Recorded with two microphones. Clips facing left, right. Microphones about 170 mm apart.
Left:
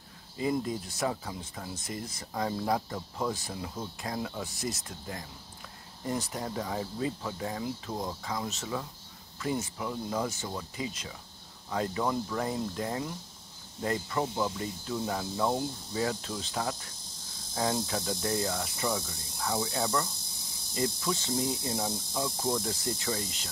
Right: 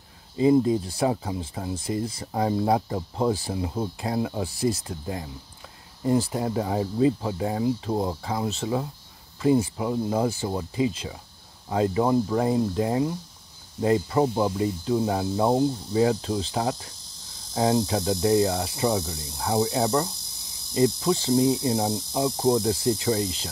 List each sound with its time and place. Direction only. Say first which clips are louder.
0.4 s speech: right 11 dB; 25° right (ahead or behind)
16.3 s speech: right 8 dB; 35° right (ahead or behind)
17.6 s speech: right 8 dB; 20° right (ahead or behind)
21.4 s speech: right 10 dB; 20° right (ahead or behind)